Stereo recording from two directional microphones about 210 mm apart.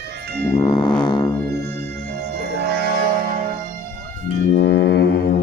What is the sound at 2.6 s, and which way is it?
Music, 50° right (ahead or behind).